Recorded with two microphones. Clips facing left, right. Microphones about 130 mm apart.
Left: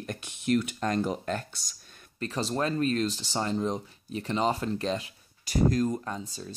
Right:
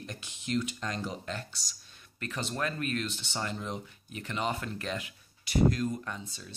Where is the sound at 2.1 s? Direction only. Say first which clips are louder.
Left 6 dB; 35° left (ahead or behind).